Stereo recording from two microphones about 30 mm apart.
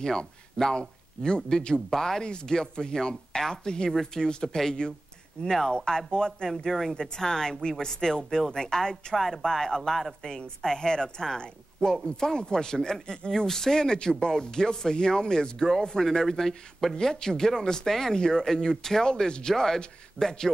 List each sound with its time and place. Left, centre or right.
0.0 s speech: left
0.7 s speech: left
1.9 s a woman's voice: centre
4.3 s a woman's voice: left
6.5 s a woman's voice: centre
19.0 s a woman's voice: left